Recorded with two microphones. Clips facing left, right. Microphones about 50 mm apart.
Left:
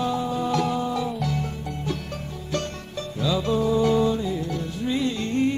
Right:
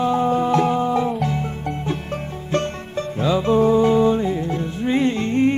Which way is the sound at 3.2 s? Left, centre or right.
Right.